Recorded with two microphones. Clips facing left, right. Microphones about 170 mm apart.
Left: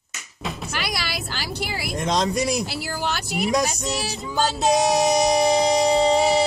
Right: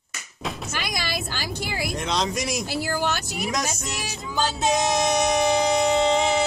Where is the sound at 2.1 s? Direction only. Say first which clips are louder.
Left 6 dB; 35° left (ahead or behind).